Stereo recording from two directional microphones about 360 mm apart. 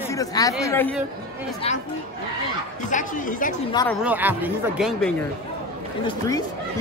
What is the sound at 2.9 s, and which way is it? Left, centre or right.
Speech, left.